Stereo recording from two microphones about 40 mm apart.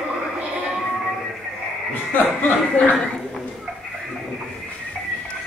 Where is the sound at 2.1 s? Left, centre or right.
Left.